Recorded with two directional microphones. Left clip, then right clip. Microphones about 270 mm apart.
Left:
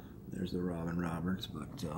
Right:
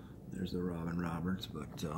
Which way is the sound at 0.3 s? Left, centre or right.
Centre.